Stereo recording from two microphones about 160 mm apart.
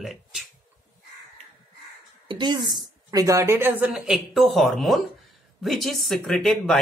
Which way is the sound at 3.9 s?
5° right (ahead or behind).